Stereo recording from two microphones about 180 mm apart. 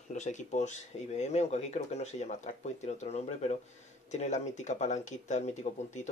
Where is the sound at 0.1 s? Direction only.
40° left (ahead or behind).